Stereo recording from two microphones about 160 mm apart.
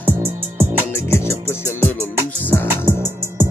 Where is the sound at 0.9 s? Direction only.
15° left (ahead or behind).